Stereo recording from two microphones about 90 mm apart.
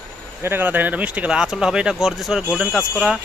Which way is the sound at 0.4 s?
25° right (ahead or behind).